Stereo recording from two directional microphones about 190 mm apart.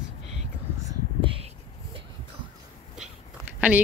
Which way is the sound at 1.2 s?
30° right (ahead or behind).